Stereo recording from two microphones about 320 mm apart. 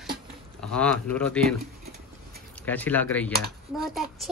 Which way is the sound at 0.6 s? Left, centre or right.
Centre.